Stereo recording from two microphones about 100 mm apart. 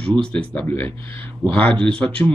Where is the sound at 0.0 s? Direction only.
10° left (ahead or behind).